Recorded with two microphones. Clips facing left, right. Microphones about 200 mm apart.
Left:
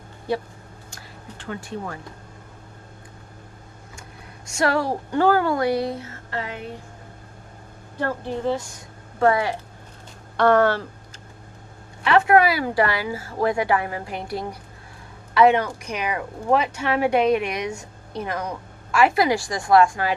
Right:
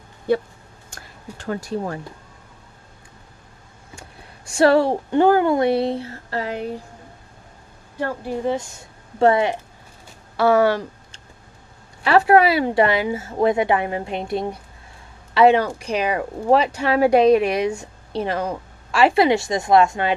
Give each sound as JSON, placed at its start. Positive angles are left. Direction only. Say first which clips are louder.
{"t": 0.8, "sound": "a sound", "louder": "right 5 dB", "side_deg": -45}
{"t": 4.5, "sound": "speech", "louder": "right 7 dB", "side_deg": -30}
{"t": 8.0, "sound": "a woman's voice", "louder": "right 1 dB", "side_deg": -10}
{"t": 10.3, "sound": "a woman's voice", "louder": "right 1 dB", "side_deg": -5}
{"t": 12.0, "sound": "speech", "louder": "right 2 dB", "side_deg": -35}